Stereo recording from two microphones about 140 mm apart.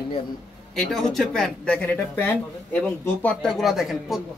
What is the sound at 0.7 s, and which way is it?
Speech, centre (ahead or behind).